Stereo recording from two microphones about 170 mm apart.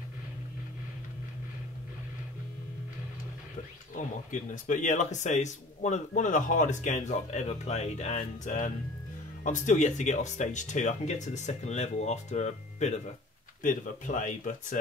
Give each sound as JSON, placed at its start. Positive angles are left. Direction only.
{"t": 3.9, "sound": "speech", "side_deg": 45}